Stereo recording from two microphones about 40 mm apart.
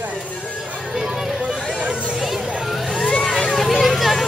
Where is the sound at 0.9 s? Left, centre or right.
Centre.